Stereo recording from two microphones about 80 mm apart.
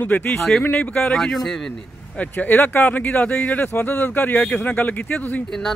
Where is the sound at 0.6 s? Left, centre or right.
Centre.